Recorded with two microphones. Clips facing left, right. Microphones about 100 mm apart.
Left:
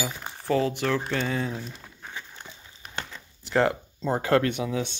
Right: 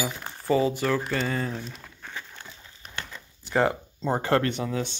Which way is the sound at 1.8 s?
10° left (ahead or behind).